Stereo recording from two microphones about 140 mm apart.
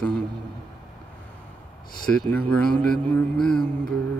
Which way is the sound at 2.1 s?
5° left (ahead or behind).